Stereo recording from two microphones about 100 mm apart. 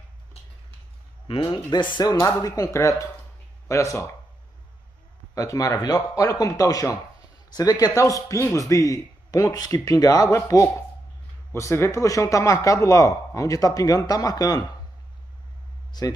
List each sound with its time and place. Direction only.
1.5 s speech: 50° left (ahead or behind)
2.1 s speech: 35° left (ahead or behind)
5.3 s speech: 35° left (ahead or behind)
15.9 s speech: 45° left (ahead or behind)